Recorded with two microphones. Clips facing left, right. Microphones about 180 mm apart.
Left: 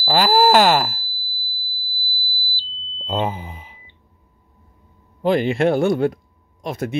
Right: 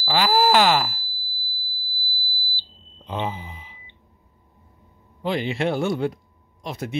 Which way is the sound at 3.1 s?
50° left (ahead or behind).